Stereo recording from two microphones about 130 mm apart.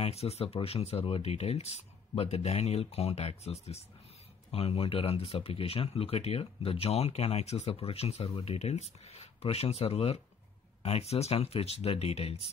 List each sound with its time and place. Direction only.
0.0 s speech: 55° left (ahead or behind)